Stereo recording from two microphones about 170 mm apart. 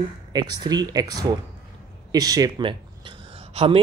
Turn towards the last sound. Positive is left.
turn(degrees=-35)  # may be behind; listen again after turning